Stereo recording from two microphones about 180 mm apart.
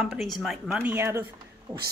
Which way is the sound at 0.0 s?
Centre (ahead or behind).